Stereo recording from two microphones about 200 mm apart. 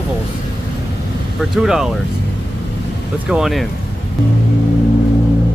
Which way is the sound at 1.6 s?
Centre (ahead or behind).